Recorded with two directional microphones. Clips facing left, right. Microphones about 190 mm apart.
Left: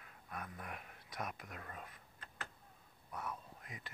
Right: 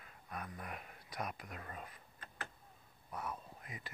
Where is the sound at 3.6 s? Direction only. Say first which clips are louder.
Right 2 dB; 5° right (ahead or behind).